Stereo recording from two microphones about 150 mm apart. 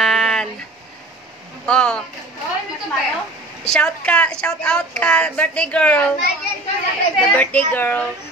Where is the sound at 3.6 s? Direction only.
5° left (ahead or behind).